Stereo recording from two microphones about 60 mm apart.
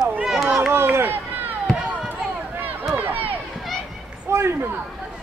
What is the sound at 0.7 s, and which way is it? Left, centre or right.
Run, right.